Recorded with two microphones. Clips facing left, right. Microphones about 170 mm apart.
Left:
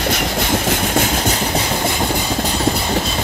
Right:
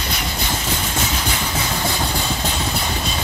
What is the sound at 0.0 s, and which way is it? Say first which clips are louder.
Train: left 7 dB; 65° left (ahead or behind).